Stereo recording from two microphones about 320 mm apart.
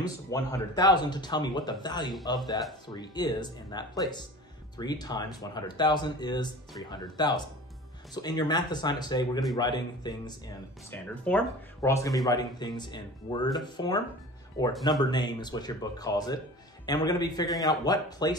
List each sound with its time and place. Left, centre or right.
0.0 s speech: centre